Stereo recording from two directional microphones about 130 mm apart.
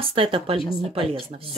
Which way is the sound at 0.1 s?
45° right (ahead or behind).